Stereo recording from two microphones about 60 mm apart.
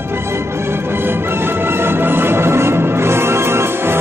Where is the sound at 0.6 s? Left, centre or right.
Right.